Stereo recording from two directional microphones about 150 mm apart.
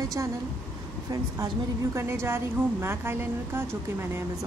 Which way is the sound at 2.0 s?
15° right (ahead or behind).